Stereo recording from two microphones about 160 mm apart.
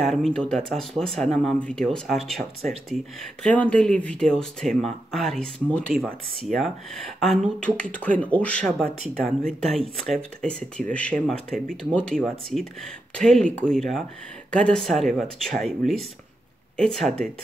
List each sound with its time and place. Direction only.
0.0 s speech: centre (ahead or behind)
8.8 s speech: 60° right (ahead or behind)
9.6 s speech: centre (ahead or behind)
16.7 s speech: 5° left (ahead or behind)